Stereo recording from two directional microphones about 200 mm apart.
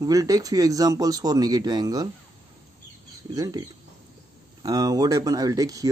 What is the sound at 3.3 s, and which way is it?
Speech, 20° right (ahead or behind).